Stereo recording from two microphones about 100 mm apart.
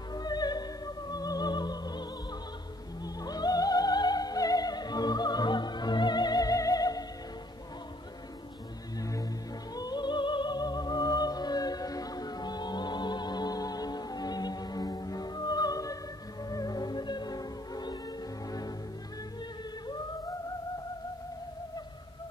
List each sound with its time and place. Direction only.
0.1 s opera: 40° left (ahead or behind)
9.8 s music: 45° left (ahead or behind)